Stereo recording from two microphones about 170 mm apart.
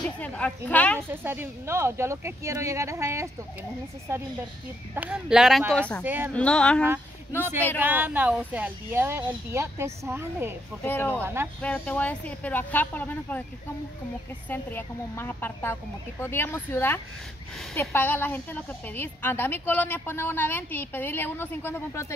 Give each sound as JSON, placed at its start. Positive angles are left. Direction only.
{"t": 0.0, "sound": "a woman's voice", "side_deg": 5}
{"t": 1.1, "sound": "speech", "side_deg": -15}
{"t": 6.0, "sound": "speech", "side_deg": -10}
{"t": 6.3, "sound": "a woman's voice", "side_deg": 5}
{"t": 7.8, "sound": "speech", "side_deg": -10}
{"t": 10.9, "sound": "a woman's voice", "side_deg": 10}
{"t": 14.5, "sound": "a woman's voice", "side_deg": 10}